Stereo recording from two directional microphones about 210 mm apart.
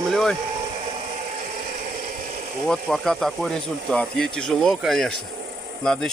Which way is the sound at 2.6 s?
Centre (ahead or behind).